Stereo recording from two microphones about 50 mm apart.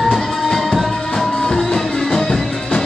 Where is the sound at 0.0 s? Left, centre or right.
Centre.